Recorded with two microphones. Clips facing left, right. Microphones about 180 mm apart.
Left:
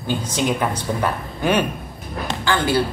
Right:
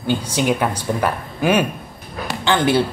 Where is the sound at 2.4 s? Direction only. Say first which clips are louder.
Right 3 dB; 20° right (ahead or behind).